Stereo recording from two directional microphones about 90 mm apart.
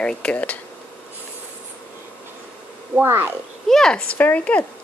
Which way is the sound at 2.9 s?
25° right (ahead or behind).